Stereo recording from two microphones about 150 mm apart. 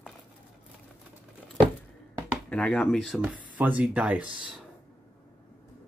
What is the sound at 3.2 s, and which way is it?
Speech, 10° right (ahead or behind).